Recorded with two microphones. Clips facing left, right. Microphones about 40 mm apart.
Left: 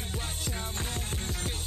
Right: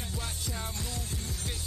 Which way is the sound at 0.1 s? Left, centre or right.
Left.